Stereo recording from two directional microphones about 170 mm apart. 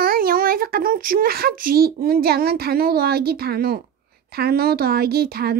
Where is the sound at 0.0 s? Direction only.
60° right (ahead or behind).